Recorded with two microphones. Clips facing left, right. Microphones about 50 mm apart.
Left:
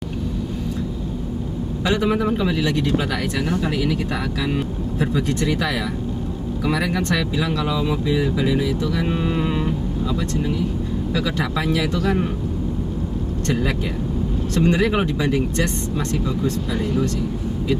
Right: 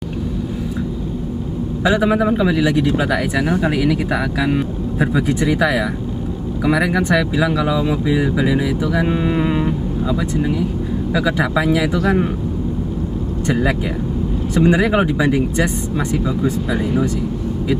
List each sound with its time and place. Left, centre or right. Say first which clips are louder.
1.8 s a man's voice: right 5 dB; centre
13.5 s a man's voice: right 5 dB; centre